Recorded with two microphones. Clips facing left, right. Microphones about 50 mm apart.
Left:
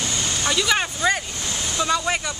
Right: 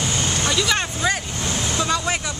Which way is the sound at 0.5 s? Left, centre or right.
Centre.